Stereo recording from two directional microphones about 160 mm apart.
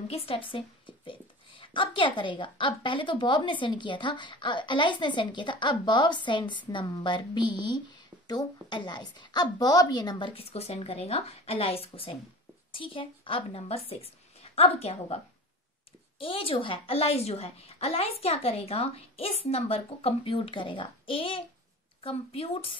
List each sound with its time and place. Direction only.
0.1 s a woman's voice: 35° left (ahead or behind)
16.2 s a woman's voice: 35° left (ahead or behind)